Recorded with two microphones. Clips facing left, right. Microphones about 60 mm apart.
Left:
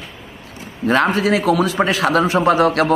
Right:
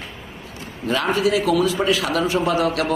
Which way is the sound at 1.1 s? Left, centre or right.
Left.